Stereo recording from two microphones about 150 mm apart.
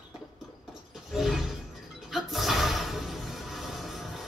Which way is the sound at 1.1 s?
Centre (ahead or behind).